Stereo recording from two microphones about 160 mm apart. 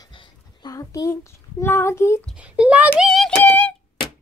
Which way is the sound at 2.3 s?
5° right (ahead or behind).